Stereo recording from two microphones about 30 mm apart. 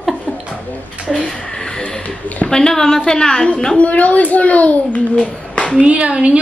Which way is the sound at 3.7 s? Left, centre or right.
Left.